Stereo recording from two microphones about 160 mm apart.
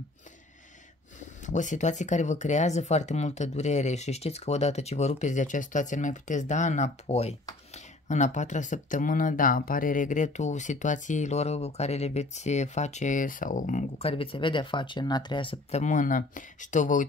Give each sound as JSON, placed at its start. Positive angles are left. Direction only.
{"t": 1.4, "sound": "speech", "side_deg": 50}
{"t": 15.7, "sound": "speech", "side_deg": 50}